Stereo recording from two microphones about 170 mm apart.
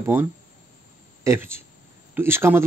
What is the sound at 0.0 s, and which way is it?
A man's voice, 10° right (ahead or behind).